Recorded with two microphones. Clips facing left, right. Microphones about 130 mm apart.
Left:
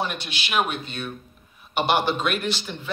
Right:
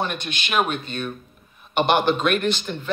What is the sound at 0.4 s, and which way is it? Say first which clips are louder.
Speech: right 2 dB; 5° left (ahead or behind).